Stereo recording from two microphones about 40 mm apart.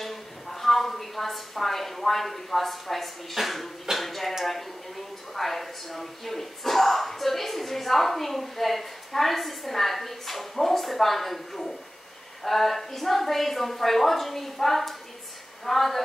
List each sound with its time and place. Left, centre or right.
0.0 s a woman's voice: centre